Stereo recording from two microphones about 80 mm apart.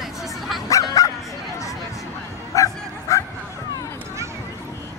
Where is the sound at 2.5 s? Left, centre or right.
Left.